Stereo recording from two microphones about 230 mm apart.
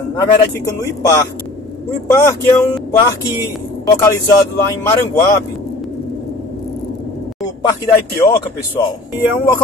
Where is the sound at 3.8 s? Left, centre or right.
Centre.